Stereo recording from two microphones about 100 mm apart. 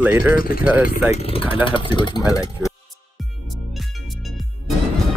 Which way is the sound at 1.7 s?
55° left (ahead or behind).